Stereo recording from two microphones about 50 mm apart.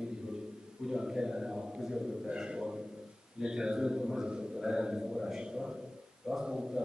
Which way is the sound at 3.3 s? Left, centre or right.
Centre.